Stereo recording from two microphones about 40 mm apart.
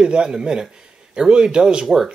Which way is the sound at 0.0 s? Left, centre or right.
Centre.